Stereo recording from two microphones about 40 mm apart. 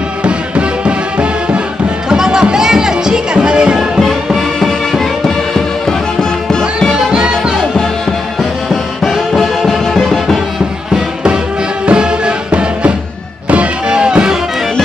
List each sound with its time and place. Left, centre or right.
0.2 s music: right
2.0 s music: centre
4.0 s music: centre
7.1 s music: right
9.3 s music: centre
11.8 s music: right